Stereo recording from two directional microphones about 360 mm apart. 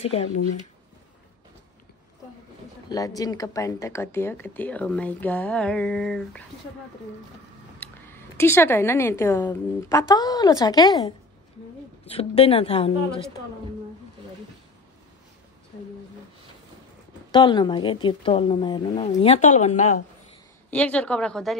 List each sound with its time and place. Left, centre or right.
0.0 s speech: centre
2.9 s speech: centre
7.8 s speech: centre
17.3 s speech: centre
20.7 s speech: centre